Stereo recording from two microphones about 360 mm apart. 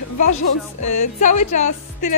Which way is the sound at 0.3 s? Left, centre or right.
Left.